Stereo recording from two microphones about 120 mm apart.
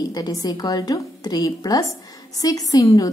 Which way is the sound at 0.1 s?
30° left (ahead or behind).